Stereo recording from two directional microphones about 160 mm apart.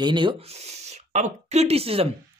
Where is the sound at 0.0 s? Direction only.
30° right (ahead or behind).